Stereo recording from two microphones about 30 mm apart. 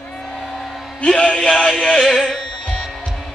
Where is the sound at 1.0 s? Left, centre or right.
Left.